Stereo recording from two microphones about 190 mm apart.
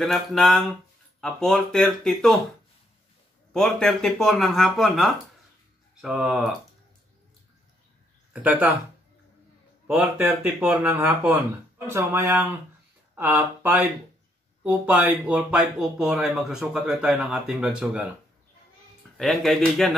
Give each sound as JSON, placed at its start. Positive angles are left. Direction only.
{"t": 0.0, "sound": "speech", "side_deg": 0}
{"t": 3.5, "sound": "speech", "side_deg": 0}
{"t": 8.3, "sound": "speech", "side_deg": -10}
{"t": 9.8, "sound": "speech", "side_deg": -10}
{"t": 19.1, "sound": "speech", "side_deg": 0}